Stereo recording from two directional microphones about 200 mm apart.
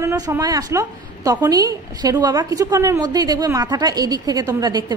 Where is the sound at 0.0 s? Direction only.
10° right (ahead or behind).